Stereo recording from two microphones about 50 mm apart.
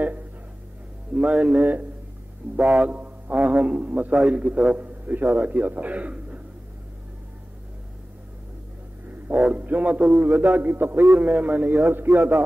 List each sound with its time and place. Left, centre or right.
1.1 s a man's voice: right
4.7 s a man's voice: right
9.3 s speech: right
10.2 s a man's voice: right